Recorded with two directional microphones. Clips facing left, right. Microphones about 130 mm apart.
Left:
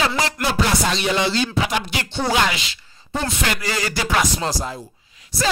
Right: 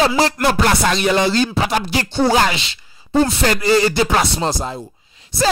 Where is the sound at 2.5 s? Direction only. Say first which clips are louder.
Right 3 dB; 30° right (ahead or behind).